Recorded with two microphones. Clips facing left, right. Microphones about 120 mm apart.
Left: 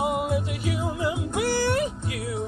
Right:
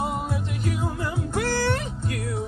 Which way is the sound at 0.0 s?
10° left (ahead or behind).